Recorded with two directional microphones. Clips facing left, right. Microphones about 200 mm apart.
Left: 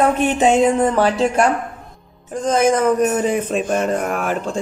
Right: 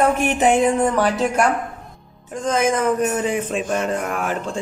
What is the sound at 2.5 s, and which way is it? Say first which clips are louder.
Speech: left 3 dB; 40° left (ahead or behind).